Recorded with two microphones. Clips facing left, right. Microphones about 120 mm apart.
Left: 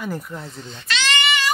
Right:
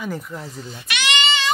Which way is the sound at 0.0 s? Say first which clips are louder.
Even; centre (ahead or behind).